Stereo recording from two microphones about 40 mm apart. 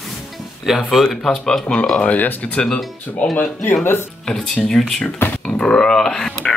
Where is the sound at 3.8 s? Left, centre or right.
Left.